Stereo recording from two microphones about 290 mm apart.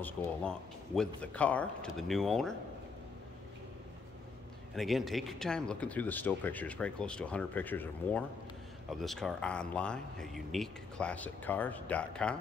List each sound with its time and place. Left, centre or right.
0.0 s speech: centre
4.7 s speech: centre